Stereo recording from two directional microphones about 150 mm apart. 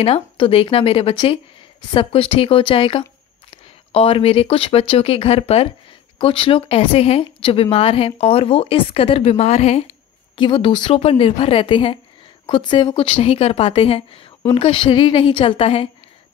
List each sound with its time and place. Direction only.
0.0 s speech: 40° left (ahead or behind)
10.3 s speech: 30° left (ahead or behind)